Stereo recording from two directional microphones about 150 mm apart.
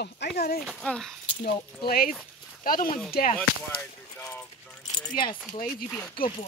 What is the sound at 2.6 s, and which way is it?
Speech, 70° left (ahead or behind).